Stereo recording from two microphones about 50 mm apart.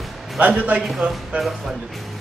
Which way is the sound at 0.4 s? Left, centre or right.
Right.